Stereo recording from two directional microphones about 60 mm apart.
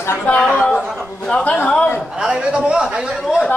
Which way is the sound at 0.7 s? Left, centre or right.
Centre.